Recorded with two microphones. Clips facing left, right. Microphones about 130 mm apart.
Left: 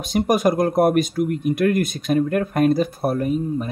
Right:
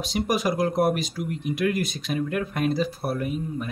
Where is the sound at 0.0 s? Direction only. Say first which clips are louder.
Left 6 dB; 50° left (ahead or behind).